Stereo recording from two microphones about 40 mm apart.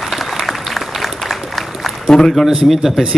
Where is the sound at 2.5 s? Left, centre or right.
Centre.